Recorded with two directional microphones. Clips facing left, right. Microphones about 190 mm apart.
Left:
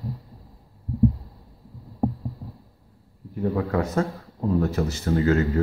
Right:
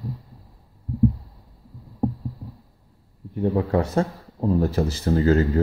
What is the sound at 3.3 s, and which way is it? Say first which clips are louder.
A man's voice: right 3 dB; 25° right (ahead or behind).